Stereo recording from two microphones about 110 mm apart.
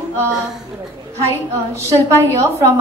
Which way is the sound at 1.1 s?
25° right (ahead or behind).